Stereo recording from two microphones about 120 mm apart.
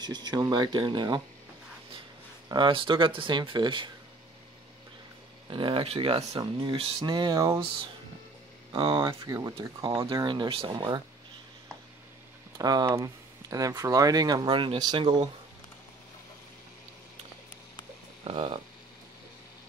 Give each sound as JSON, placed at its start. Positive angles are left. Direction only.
{"t": 0.0, "sound": "speech", "side_deg": -35}
{"t": 2.5, "sound": "speech", "side_deg": -40}
{"t": 5.5, "sound": "speech", "side_deg": -45}
{"t": 6.4, "sound": "speech", "side_deg": -40}
{"t": 8.7, "sound": "speech", "side_deg": -45}
{"t": 9.2, "sound": "speech", "side_deg": -30}
{"t": 12.5, "sound": "speech", "side_deg": -35}
{"t": 18.2, "sound": "speech", "side_deg": -45}